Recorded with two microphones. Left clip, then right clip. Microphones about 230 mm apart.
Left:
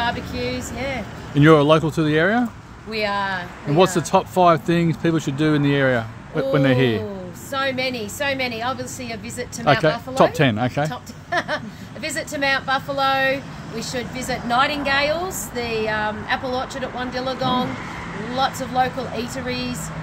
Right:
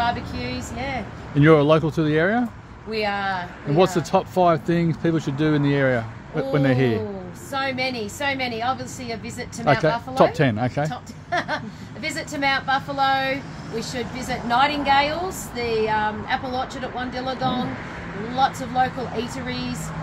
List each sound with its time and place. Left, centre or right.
0.0 s speech: centre
1.3 s speech: centre
2.9 s speech: centre
3.7 s speech: centre
7.5 s a woman's voice: centre
9.8 s speech: centre
10.9 s a woman's voice: centre